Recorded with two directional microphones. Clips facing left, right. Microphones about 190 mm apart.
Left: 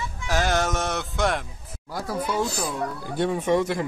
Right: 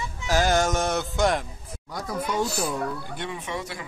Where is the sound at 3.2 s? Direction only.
40° left (ahead or behind).